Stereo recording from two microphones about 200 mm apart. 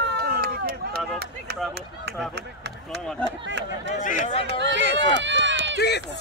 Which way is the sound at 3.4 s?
60° right (ahead or behind).